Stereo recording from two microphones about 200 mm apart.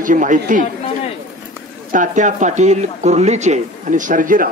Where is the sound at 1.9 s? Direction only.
40° right (ahead or behind).